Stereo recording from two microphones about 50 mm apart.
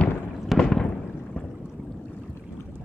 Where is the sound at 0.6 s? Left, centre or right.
Centre.